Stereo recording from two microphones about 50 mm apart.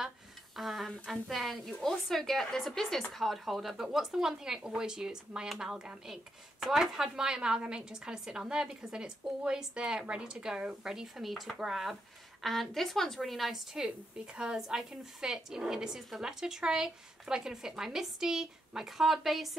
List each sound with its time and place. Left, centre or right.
0.6 s a woman's voice: centre
13.8 s a woman's voice: right; by 19.5 s centre